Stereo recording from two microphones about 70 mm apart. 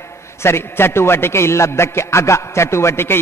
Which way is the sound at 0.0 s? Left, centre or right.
Left.